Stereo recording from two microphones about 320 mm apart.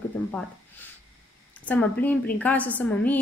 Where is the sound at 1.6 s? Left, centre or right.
Centre.